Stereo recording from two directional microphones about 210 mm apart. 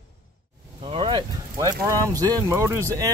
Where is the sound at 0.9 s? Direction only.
25° right (ahead or behind).